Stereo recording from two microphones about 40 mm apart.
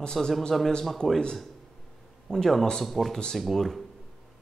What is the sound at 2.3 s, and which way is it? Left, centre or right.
Speech, centre.